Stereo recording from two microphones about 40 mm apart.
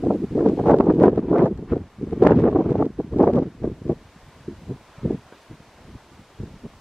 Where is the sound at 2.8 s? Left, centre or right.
Centre.